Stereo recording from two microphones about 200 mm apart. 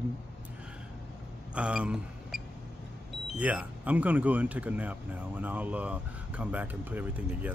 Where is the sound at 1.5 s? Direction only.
5° right (ahead or behind).